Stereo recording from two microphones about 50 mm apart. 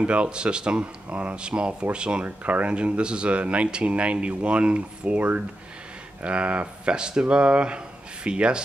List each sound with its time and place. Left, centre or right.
0.0 s speech: right